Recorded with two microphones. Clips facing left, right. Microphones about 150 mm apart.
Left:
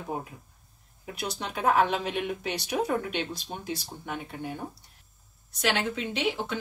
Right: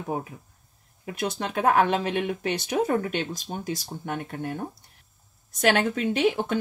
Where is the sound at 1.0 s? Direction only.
55° right (ahead or behind).